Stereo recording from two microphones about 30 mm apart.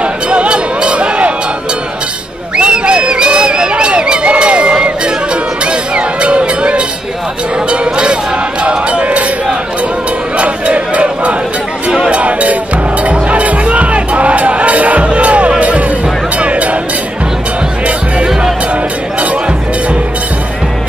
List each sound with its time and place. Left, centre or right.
0.0 s music: right
2.5 s crowd: right
5.0 s music: right
8.6 s crowd: right
10.3 s a sound: right
12.1 s music: right